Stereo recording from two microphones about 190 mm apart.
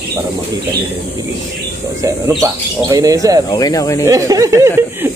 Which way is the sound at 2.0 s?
15° right (ahead or behind).